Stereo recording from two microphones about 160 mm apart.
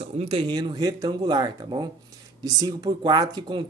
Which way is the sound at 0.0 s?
40° right (ahead or behind).